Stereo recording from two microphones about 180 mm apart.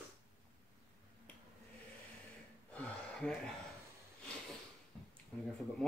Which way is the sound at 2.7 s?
5° left (ahead or behind).